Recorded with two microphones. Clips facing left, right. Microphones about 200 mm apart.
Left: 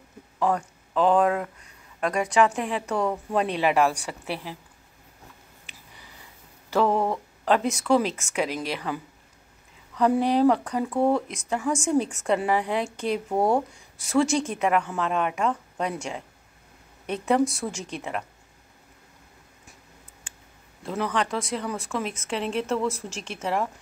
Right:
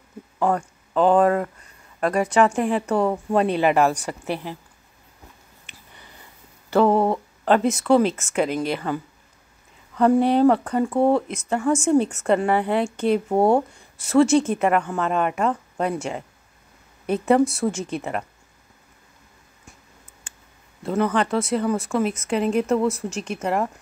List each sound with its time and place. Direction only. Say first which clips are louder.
0.4 s a woman's voice: right 3 dB; centre (ahead or behind)
6.9 s speech: right 5 dB; 35° right (ahead or behind)
7.4 s a woman's voice: right 4 dB; centre (ahead or behind)
13.3 s speech: right 4 dB; 25° right (ahead or behind)
13.9 s a woman's voice: right 6 dB; centre (ahead or behind)
20.8 s a woman's voice: right 6 dB; centre (ahead or behind)
22.8 s speech: right 5 dB; 10° left (ahead or behind)